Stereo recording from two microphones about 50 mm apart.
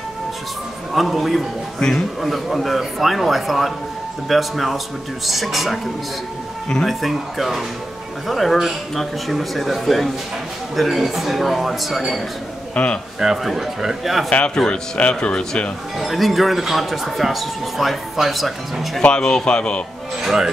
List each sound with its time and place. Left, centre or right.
0.9 s speech: centre
1.8 s a man's voice: centre
2.2 s speech: centre
6.9 s speech: centre
12.7 s speech: left
13.2 s speech: centre
14.3 s speech: left
16.0 s speech: centre
19.0 s speech: centre
20.2 s speech: centre